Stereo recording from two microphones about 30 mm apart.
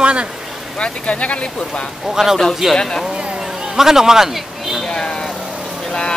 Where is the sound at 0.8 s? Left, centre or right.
Left.